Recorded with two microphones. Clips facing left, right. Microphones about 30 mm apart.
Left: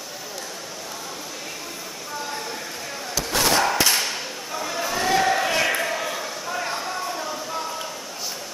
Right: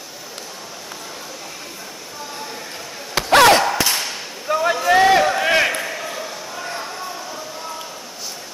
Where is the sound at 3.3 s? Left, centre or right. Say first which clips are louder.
Right 11 dB; right.